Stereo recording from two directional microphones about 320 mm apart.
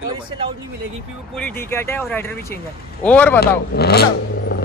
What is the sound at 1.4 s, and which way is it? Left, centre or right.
Speech, centre.